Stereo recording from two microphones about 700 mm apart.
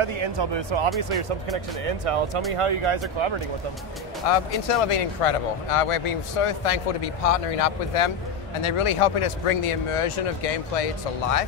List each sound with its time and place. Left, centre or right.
0.0 s speech: right
4.3 s speech: left